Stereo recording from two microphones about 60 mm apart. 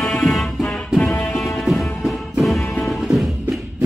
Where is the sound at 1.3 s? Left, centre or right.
Centre.